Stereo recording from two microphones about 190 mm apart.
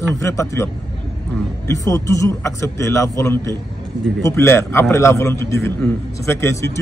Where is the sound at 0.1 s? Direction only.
15° left (ahead or behind).